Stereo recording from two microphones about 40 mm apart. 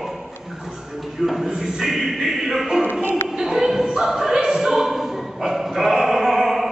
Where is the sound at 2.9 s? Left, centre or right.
Left.